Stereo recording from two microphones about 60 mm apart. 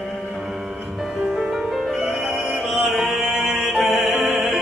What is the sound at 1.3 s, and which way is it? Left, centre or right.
Music, centre.